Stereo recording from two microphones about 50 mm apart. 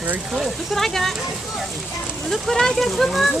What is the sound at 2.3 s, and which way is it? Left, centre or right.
Speech, centre.